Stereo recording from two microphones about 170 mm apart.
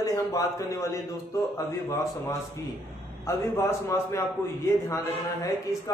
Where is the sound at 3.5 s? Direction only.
15° left (ahead or behind).